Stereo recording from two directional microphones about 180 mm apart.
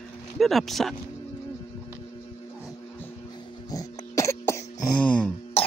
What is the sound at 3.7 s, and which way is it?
Cough, 20° left (ahead or behind).